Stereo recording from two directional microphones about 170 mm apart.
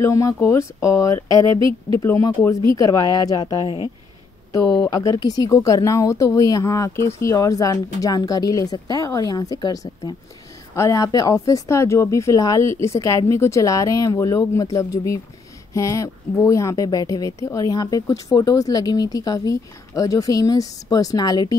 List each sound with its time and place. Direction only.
0.0 s speech: 20° left (ahead or behind)